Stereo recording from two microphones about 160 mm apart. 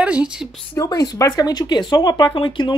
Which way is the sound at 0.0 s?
5° right (ahead or behind).